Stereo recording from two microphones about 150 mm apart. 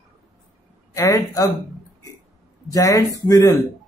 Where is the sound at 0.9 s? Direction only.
20° left (ahead or behind).